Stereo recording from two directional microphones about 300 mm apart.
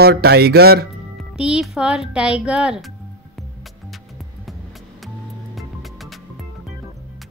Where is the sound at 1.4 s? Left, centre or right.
Centre.